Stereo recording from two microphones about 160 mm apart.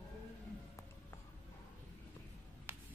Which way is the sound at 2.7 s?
15° right (ahead or behind).